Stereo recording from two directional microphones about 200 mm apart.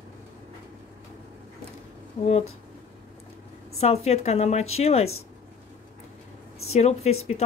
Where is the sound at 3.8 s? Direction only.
30° left (ahead or behind).